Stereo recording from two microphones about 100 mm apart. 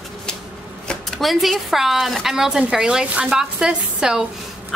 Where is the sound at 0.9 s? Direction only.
Centre (ahead or behind).